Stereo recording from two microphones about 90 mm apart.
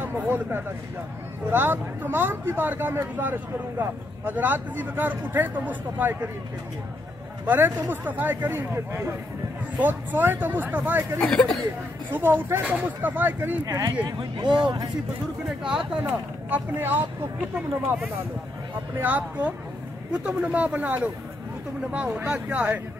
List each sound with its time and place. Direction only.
0.0 s speech: 25° right (ahead or behind)
7.4 s speech: 20° right (ahead or behind)
11.1 s speech: 10° left (ahead or behind)
12.1 s speech: 25° right (ahead or behind)
13.7 s speech: 45° right (ahead or behind)
14.0 s speech: 55° right (ahead or behind)
16.0 s speech: 20° right (ahead or behind)
18.9 s speech: 20° right (ahead or behind)